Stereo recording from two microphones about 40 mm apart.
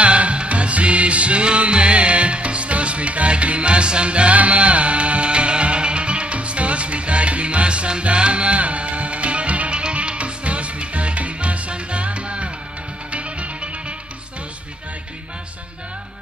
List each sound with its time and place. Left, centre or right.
0.0 s music: right